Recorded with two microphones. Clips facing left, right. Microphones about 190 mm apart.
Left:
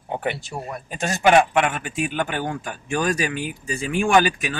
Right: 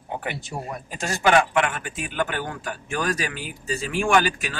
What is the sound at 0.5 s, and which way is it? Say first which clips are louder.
Speech: left 1 dB; 5° right (ahead or behind).